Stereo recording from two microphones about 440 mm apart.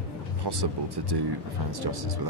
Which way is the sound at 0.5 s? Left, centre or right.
Right.